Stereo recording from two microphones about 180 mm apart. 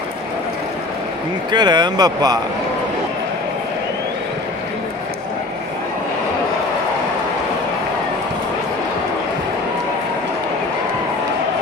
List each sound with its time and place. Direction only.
1.5 s speech: 25° right (ahead or behind)